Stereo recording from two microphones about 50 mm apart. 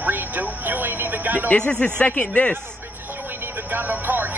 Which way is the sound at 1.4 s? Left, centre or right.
Left.